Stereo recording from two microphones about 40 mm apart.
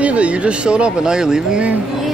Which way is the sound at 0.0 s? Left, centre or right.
Right.